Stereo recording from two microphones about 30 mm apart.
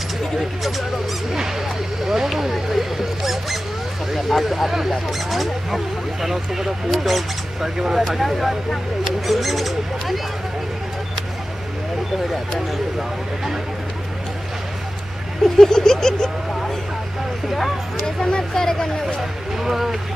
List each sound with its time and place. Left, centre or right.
0.4 s speech: centre
2.0 s mouse: centre
4.1 s speech: centre
15.5 s a sound: centre
18.0 s a sound: left
18.5 s speech: centre
19.6 s speech: centre